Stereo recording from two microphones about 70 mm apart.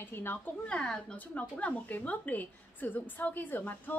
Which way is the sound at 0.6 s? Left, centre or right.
Centre.